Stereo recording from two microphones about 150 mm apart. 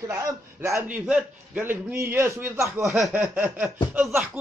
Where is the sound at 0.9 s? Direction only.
10° right (ahead or behind).